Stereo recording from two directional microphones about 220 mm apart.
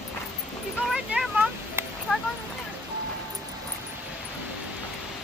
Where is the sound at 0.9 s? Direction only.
5° right (ahead or behind).